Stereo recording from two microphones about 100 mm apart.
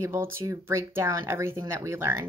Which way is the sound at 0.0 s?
25° right (ahead or behind).